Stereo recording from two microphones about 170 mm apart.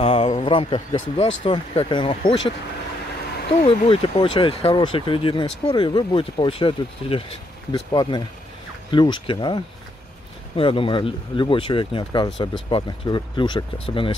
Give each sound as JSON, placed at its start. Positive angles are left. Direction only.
{"t": 0.0, "sound": "speech", "side_deg": 35}
{"t": 3.6, "sound": "speech", "side_deg": 30}